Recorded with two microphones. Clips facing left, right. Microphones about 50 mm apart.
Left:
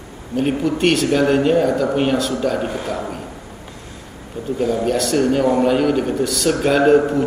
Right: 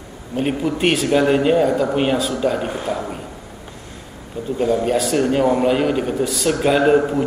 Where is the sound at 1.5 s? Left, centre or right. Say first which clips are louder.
Even; right.